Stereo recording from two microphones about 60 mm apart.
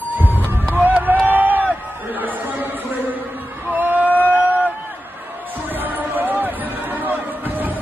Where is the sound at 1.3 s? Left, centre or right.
Right.